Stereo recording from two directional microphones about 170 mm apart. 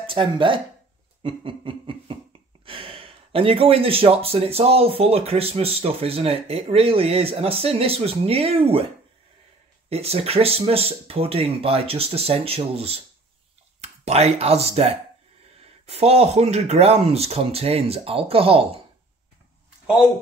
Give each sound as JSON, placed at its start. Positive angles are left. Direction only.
{"t": 0.0, "sound": "speech", "side_deg": -30}
{"t": 1.2, "sound": "a sound", "side_deg": -30}
{"t": 2.6, "sound": "speech", "side_deg": -30}
{"t": 9.8, "sound": "speech", "side_deg": -35}